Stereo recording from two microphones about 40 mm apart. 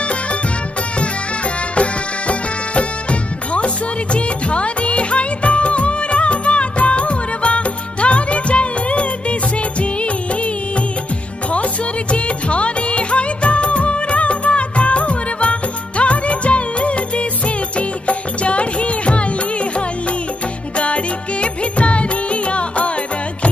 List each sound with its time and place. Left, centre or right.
1.8 s music: left
12.1 s music of bollywood: left
17.7 s music: left
20.7 s music: left